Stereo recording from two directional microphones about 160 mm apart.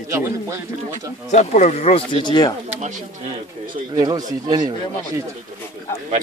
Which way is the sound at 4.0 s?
25° right (ahead or behind).